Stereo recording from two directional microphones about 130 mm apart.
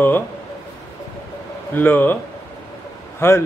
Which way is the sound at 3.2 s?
20° left (ahead or behind).